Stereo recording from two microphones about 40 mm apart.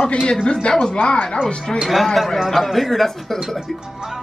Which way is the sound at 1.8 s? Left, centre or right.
Centre.